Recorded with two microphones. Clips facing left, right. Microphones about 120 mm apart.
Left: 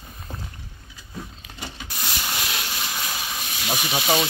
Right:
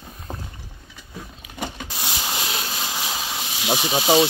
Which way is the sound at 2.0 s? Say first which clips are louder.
Right 2 dB; 25° right (ahead or behind).